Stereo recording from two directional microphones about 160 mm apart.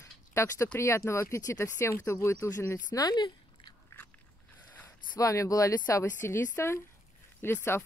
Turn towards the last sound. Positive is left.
turn(degrees=15)  # may be behind; listen again after turning